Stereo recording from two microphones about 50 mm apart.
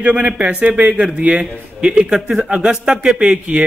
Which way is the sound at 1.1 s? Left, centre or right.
Right.